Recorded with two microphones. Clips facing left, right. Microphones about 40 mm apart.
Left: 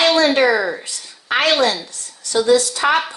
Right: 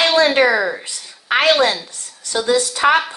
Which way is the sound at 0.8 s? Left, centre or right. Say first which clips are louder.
Even; right.